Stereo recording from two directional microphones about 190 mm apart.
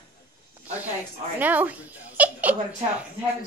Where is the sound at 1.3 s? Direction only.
10° right (ahead or behind).